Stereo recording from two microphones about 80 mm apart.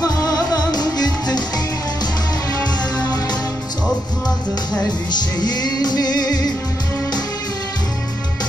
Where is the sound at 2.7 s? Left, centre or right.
Left.